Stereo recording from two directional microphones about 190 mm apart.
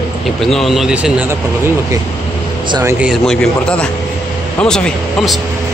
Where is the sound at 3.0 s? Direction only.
Centre (ahead or behind).